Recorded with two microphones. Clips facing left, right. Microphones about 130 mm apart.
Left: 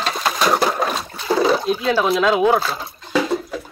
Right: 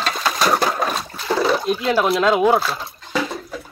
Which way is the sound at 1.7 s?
5° left (ahead or behind).